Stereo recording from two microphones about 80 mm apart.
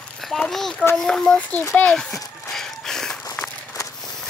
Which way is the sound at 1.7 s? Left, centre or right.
Centre.